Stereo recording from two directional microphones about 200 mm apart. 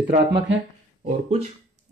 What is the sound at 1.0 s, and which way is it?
Speech, 30° right (ahead or behind).